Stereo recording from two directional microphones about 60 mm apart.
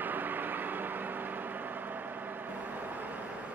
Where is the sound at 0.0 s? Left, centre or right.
Right.